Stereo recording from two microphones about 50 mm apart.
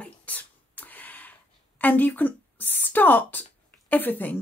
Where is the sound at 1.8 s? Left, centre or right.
Left.